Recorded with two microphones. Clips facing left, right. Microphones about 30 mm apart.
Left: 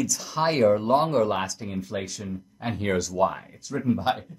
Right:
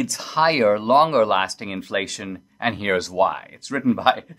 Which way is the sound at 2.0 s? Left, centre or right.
Right.